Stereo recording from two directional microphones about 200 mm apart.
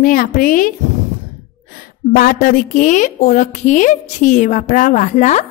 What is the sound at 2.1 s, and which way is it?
A woman's voice, 45° left (ahead or behind).